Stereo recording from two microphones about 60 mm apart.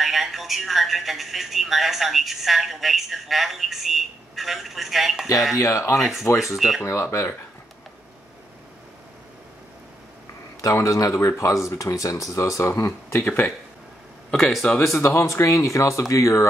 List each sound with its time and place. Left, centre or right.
0.0 s speech: centre
5.6 s speech: left
5.9 s speech: centre
6.8 s speech: left
10.6 s speech: left
14.3 s speech: centre
15.0 s speech: left
15.3 s speech: left